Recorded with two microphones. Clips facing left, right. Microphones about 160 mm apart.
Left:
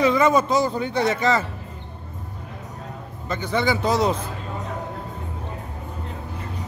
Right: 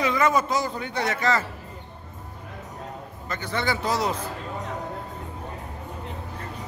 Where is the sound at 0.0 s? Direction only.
25° left (ahead or behind).